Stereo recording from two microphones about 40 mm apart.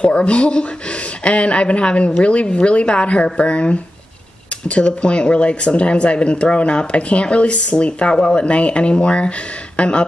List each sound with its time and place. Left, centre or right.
0.0 s speech: left